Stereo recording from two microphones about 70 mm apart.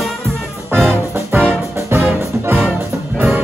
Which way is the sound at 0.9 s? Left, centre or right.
Right.